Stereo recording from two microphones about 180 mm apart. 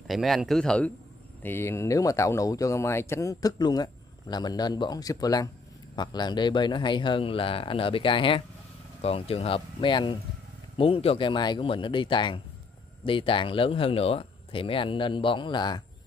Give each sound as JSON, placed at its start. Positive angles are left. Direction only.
{"t": 0.0, "sound": "a man's voice", "side_deg": 0}